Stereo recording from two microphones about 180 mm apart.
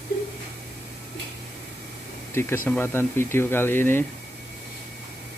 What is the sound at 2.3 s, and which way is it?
Speech, 15° left (ahead or behind).